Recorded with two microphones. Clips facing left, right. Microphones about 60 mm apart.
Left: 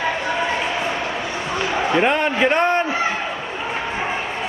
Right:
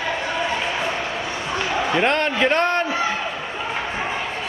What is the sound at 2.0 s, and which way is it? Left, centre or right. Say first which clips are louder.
A man's voice: left 1 dB; centre.